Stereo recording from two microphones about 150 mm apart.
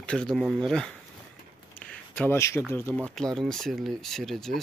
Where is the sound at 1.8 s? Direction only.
10° left (ahead or behind).